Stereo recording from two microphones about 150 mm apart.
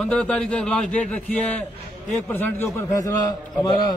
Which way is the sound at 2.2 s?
20° left (ahead or behind).